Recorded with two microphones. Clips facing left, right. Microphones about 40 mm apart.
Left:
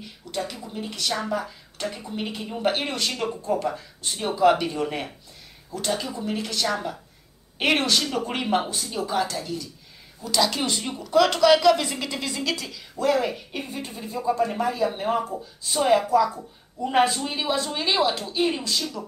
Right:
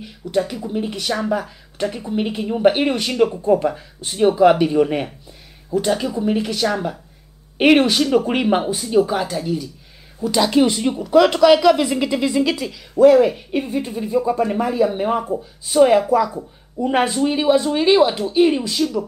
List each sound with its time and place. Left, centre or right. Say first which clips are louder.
0.3 s speech: right 10 dB; centre